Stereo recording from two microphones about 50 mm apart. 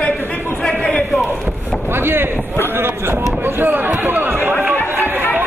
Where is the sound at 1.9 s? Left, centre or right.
Right.